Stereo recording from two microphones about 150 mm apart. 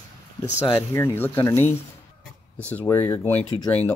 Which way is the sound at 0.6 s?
15° left (ahead or behind).